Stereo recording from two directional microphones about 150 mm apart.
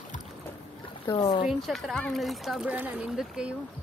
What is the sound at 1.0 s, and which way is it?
Speech, 30° left (ahead or behind).